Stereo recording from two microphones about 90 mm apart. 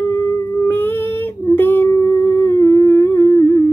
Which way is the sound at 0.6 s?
25° left (ahead or behind).